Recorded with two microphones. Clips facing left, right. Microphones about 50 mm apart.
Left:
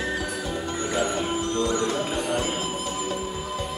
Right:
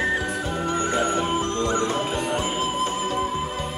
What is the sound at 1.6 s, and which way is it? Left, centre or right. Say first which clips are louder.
Music: right 1 dB; right.